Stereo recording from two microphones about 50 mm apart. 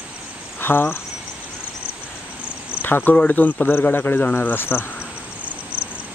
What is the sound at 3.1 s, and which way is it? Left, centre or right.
Speech, left.